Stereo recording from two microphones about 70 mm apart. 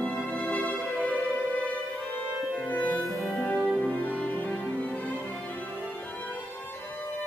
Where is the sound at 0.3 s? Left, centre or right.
Left.